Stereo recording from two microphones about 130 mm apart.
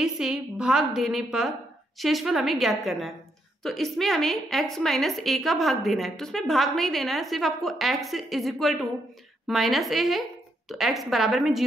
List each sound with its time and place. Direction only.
0.0 s a woman's voice: 5° right (ahead or behind)